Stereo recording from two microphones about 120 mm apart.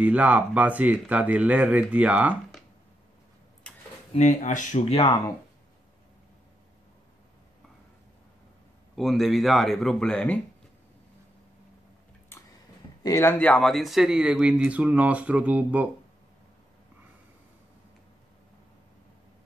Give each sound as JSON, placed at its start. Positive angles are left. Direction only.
{"t": 0.0, "sound": "speech", "side_deg": -10}
{"t": 4.1, "sound": "speech", "side_deg": 85}
{"t": 8.9, "sound": "speech", "side_deg": 0}
{"t": 13.2, "sound": "speech", "side_deg": 15}